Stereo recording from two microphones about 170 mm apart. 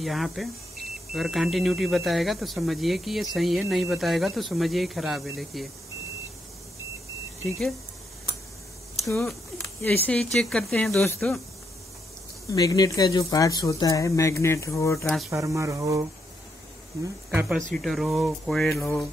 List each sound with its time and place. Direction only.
0.0 s speech: centre (ahead or behind)
7.4 s speech: centre (ahead or behind)
9.8 s speech: 10° left (ahead or behind)
12.4 s speech: 20° left (ahead or behind)
15.0 s speech: centre (ahead or behind)
15.3 s speech: 15° right (ahead or behind)
17.6 s speech: 5° left (ahead or behind)